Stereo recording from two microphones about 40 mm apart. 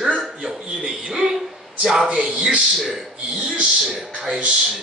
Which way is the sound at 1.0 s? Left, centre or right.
Centre.